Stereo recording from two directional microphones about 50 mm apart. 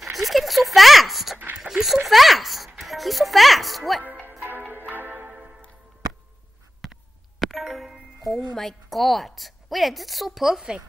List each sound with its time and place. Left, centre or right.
0.0 s a sound: centre
2.0 s a child's voice: centre
4.0 s music: right
6.8 s doorbell: centre